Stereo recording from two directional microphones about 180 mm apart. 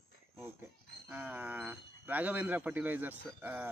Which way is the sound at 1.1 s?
10° right (ahead or behind).